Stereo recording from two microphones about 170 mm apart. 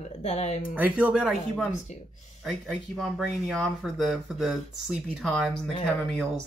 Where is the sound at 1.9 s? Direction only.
40° left (ahead or behind).